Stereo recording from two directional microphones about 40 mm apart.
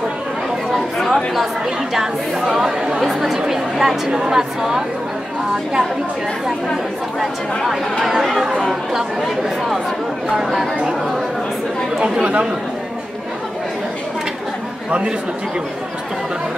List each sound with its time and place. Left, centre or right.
1.0 s speech: centre
3.0 s a woman's voice: centre
8.0 s speech: centre
12.2 s speech: right
14.9 s speech: right